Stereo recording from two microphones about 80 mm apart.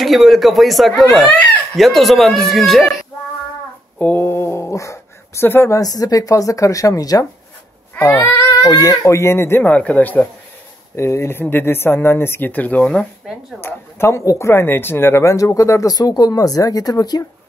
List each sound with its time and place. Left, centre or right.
0.0 s speech: centre
4.0 s speech: left
5.8 s speech: left
8.3 s speech: left
9.7 s speech: centre
11.0 s speech: left
13.6 s speech: left